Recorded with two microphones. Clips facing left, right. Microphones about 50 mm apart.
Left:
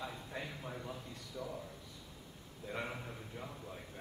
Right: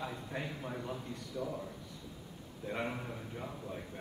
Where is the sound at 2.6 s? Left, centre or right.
Centre.